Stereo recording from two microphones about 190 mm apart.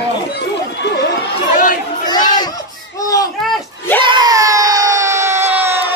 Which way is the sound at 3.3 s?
Centre (ahead or behind).